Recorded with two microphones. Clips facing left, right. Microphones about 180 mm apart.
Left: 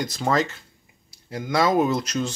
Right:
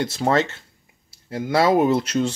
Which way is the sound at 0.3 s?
25° right (ahead or behind).